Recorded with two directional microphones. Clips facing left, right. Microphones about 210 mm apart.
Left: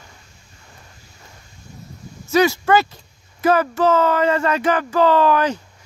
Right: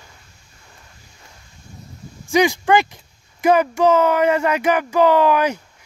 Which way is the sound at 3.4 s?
15° right (ahead or behind).